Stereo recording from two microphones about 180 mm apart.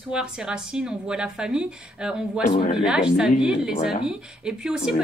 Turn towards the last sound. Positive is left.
turn(degrees=-5)  # may be behind; listen again after turning